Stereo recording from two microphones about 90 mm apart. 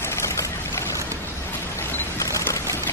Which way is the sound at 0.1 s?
35° left (ahead or behind).